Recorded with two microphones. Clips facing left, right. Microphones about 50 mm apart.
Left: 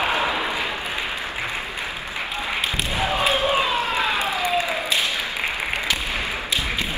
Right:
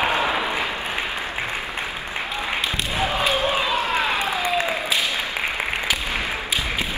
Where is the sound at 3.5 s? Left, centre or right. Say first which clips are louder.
Left 1 dB; left.